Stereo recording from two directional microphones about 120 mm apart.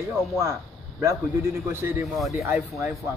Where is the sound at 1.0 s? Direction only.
20° right (ahead or behind).